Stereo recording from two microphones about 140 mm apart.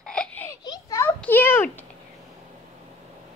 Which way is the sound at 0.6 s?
30° left (ahead or behind).